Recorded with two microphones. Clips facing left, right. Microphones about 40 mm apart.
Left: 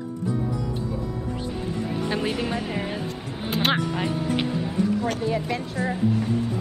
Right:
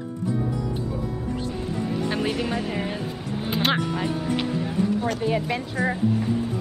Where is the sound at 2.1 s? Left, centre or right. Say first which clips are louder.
Left 1 dB; centre.